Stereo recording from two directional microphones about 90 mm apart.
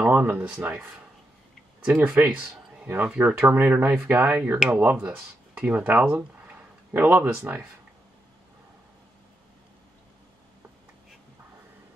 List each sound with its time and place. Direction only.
0.0 s speech: 20° right (ahead or behind)
1.9 s speech: 10° right (ahead or behind)
3.3 s speech: 30° right (ahead or behind)
3.6 s speech: 15° right (ahead or behind)